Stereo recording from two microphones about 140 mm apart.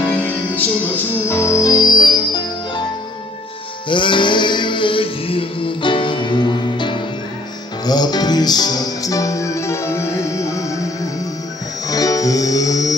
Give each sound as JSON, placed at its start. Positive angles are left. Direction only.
{"t": 0.1, "sound": "music", "side_deg": 10}
{"t": 3.9, "sound": "music", "side_deg": 35}